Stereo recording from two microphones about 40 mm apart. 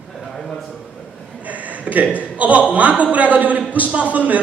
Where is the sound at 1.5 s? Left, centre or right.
Right.